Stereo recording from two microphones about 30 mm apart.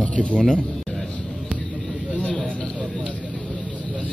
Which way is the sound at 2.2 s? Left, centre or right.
Left.